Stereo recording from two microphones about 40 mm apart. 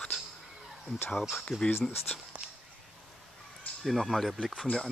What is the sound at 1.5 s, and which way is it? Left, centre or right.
Speech, centre.